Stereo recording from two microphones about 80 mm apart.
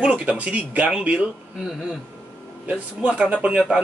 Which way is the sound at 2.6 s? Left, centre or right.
Centre.